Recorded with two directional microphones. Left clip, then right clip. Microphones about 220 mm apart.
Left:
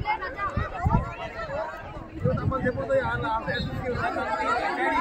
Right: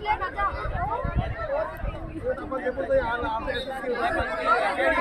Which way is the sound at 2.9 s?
30° left (ahead or behind).